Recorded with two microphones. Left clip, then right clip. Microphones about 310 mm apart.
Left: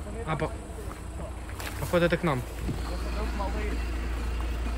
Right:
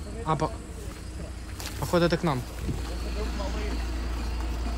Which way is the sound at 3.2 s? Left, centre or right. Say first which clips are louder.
Left 2 dB; centre.